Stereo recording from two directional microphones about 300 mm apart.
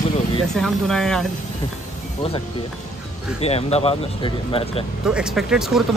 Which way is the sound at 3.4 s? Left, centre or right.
Left.